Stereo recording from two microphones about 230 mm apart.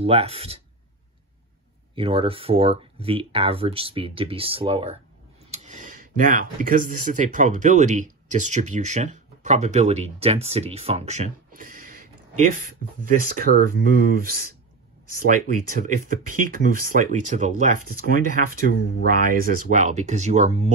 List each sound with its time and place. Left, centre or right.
0.0 s speech: right
2.0 s speech: right